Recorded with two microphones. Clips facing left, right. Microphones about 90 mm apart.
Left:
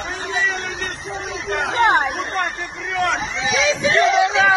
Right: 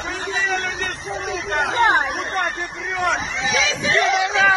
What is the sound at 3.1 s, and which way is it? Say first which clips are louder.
Hubbub: even; centre (ahead or behind).